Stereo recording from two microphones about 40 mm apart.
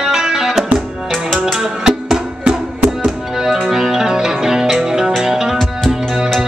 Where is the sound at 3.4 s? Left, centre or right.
Centre.